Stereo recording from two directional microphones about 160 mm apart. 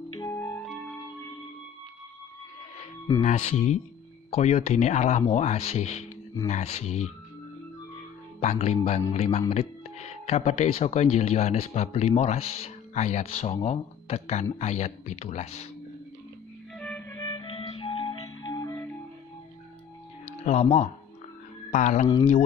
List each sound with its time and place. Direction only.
0.1 s music: 20° left (ahead or behind)
3.2 s speech: 45° left (ahead or behind)
8.4 s speech: 45° left (ahead or behind)
16.7 s music: 5° left (ahead or behind)
17.1 s music: 25° left (ahead or behind)
20.4 s speech: 35° left (ahead or behind)
21.7 s speech: 50° left (ahead or behind)